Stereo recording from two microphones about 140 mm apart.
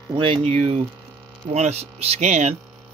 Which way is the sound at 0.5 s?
45° right (ahead or behind).